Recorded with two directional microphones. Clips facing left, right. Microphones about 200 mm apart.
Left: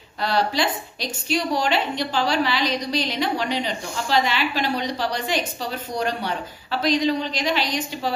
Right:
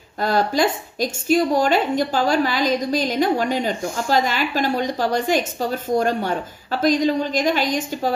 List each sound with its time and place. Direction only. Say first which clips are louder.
0.2 s a woman's voice: right 4 dB; 45° right (ahead or behind)